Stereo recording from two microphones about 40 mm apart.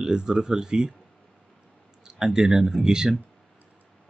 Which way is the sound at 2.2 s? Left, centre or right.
Centre.